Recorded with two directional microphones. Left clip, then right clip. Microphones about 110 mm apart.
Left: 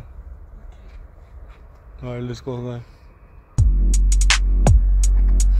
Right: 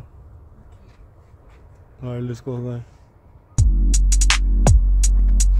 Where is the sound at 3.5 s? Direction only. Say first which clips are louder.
Right 3 dB; centre (ahead or behind).